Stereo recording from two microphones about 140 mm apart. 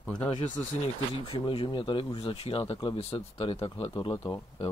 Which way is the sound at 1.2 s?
40° left (ahead or behind).